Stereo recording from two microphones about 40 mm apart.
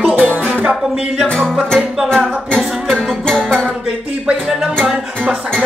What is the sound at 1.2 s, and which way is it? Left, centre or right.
Music, centre.